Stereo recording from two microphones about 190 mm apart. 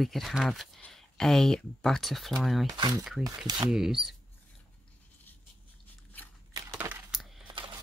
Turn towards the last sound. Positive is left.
turn(degrees=0)  # may be behind; listen again after turning